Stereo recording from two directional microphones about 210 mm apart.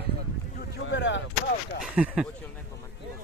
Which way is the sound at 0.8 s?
60° left (ahead or behind).